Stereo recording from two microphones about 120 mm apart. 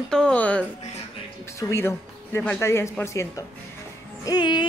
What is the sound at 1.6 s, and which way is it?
Speech, 20° left (ahead or behind).